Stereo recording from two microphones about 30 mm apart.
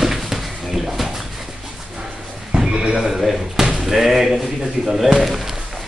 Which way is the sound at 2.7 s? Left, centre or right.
Centre.